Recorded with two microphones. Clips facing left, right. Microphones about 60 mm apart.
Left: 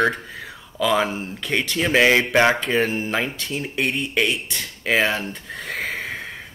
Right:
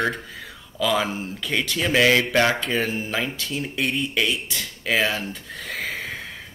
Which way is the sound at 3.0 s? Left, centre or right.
Left.